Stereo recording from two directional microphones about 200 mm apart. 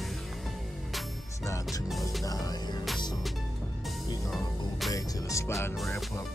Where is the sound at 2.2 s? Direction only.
20° left (ahead or behind).